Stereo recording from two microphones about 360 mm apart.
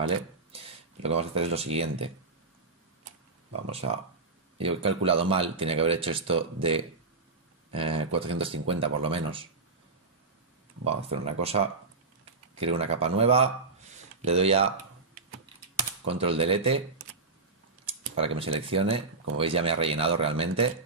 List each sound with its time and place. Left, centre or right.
1.0 s speech: centre
4.6 s speech: centre
11.0 s speech: centre
16.1 s speech: centre
17.8 s speech: centre